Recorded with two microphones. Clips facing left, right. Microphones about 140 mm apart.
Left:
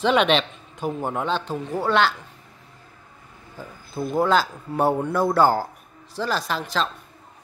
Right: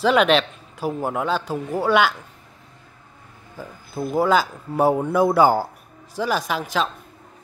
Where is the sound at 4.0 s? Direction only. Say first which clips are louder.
Right 1 dB; 5° right (ahead or behind).